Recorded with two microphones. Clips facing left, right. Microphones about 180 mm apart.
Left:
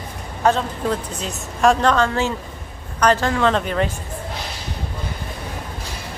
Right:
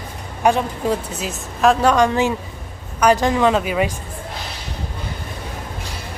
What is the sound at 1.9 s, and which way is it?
A woman's voice, 15° right (ahead or behind).